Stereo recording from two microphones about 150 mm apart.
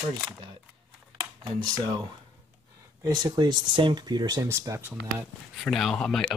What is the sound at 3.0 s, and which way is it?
Speech, 30° right (ahead or behind).